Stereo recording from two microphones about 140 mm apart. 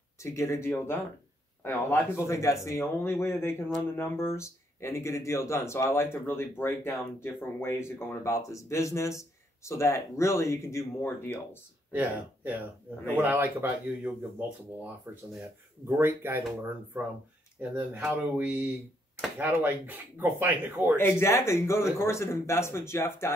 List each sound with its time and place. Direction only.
0.2 s speech: 20° left (ahead or behind)
11.9 s speech: 10° right (ahead or behind)
17.6 s speech: 15° right (ahead or behind)
20.9 s speech: 15° left (ahead or behind)